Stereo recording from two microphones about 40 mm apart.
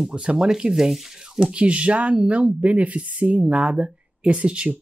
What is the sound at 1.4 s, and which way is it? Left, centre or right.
Speech, right.